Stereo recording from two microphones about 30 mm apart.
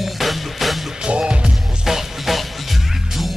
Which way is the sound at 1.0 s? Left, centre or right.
Right.